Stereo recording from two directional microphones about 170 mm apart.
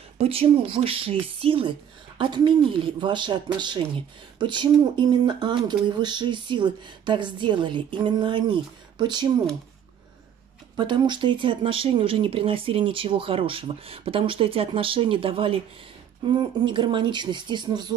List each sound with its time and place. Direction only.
0.2 s speech: 35° right (ahead or behind)
10.8 s speech: 25° right (ahead or behind)